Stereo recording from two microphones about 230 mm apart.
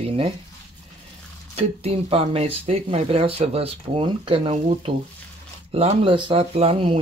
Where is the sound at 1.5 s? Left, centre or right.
Right.